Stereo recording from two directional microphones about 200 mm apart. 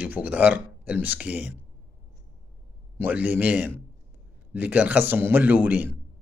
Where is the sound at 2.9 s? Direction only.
10° right (ahead or behind).